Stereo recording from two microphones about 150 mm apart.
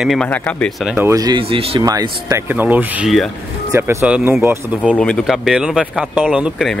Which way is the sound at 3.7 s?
20° right (ahead or behind).